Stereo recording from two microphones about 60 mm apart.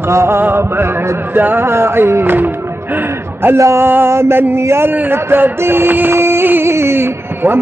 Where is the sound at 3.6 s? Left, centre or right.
Right.